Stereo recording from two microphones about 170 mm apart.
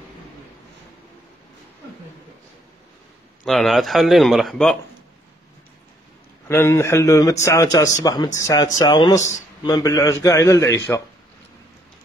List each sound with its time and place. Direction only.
3.4 s speech: centre (ahead or behind)
6.4 s a man's voice: 15° left (ahead or behind)